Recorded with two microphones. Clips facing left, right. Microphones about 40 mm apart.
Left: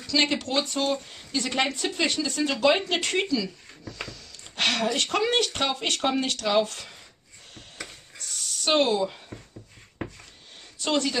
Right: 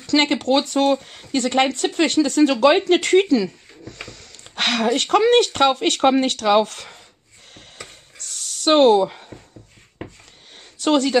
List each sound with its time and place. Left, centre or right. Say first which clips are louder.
0.0 s speech: right 6 dB; right
7.5 s a sound: right 1 dB; right
10.8 s a woman's voice: right 8 dB; right